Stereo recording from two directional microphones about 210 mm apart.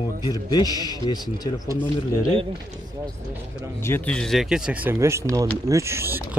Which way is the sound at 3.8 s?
10° left (ahead or behind).